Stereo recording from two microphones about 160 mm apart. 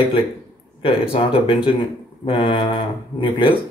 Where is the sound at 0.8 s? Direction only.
35° left (ahead or behind).